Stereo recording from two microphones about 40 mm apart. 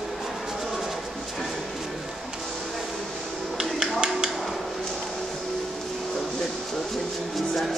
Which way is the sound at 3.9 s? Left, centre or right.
Right.